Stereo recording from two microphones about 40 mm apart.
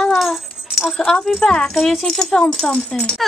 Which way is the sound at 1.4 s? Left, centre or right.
Left.